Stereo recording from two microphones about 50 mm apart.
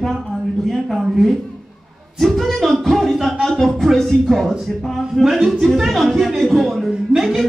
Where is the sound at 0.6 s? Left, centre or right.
Centre.